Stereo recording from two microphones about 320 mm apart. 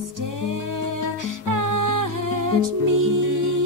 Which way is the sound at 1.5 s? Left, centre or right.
Right.